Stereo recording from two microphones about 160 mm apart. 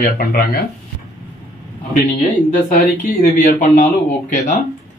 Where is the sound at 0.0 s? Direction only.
65° left (ahead or behind).